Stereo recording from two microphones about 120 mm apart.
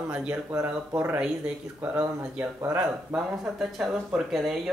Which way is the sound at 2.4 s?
25° right (ahead or behind).